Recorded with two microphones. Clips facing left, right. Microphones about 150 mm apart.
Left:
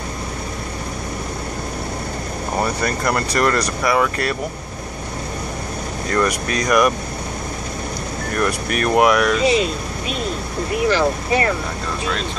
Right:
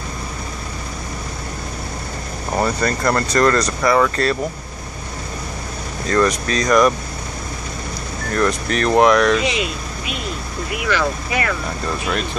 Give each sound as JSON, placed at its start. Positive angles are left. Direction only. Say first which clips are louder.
{"t": 2.6, "sound": "speech", "louder": "right 3 dB", "side_deg": 10}
{"t": 6.0, "sound": "speech", "louder": "right 3 dB", "side_deg": 10}
{"t": 8.4, "sound": "speech", "louder": "right 2 dB", "side_deg": 10}
{"t": 9.4, "sound": "speech", "louder": "left 5 dB", "side_deg": 40}